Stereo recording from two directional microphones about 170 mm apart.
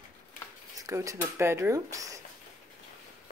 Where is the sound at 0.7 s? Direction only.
20° right (ahead or behind).